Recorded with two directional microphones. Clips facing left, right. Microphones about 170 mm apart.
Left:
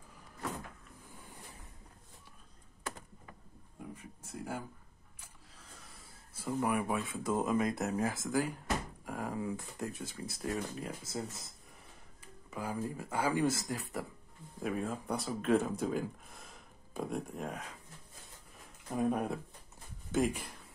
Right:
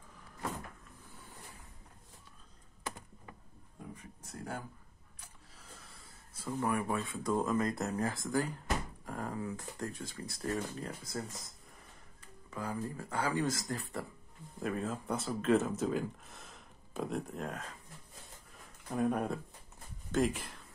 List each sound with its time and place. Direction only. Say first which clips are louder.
3.9 s a sound: left 2 dB; 10° left (ahead or behind)
6.3 s speech: left 1 dB; 10° left (ahead or behind)
7.3 s speech: even; 15° left (ahead or behind)
7.6 s speech: left 1 dB; centre (ahead or behind)
9.0 s a sound: left 1 dB; 5° left (ahead or behind)
9.4 s speech: left 1 dB; 15° left (ahead or behind)
12.4 s speech: left 1 dB; 10° left (ahead or behind)
15.5 s speech: even; 10° left (ahead or behind)
15.8 s speech: right 1 dB; centre (ahead or behind)
18.9 s speech: even; 5° left (ahead or behind)